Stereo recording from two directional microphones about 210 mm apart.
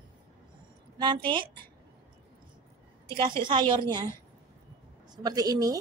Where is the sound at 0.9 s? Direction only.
20° right (ahead or behind).